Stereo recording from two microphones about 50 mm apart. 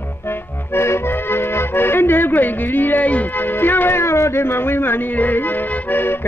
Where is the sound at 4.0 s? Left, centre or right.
Left.